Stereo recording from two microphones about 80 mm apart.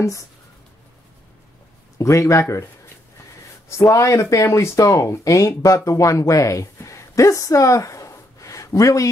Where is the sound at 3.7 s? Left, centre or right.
Left.